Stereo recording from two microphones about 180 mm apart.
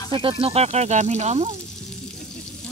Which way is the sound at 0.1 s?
30° right (ahead or behind).